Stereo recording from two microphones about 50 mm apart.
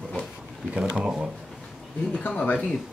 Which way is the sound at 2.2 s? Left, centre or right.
Left.